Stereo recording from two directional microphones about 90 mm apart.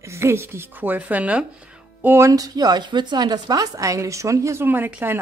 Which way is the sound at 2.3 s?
45° right (ahead or behind).